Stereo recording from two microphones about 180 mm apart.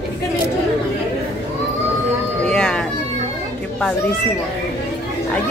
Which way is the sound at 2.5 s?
5° left (ahead or behind).